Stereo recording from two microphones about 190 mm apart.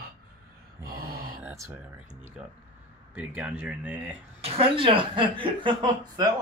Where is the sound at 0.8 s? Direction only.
55° right (ahead or behind).